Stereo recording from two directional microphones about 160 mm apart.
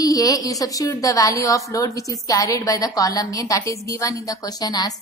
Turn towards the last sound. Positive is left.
turn(degrees=25)  # may be behind; listen again after turning